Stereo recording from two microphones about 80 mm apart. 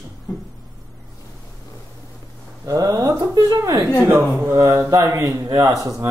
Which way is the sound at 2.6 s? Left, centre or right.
Right.